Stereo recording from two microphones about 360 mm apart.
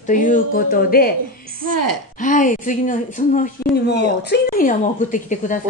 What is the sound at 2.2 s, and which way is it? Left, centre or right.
Speech, left.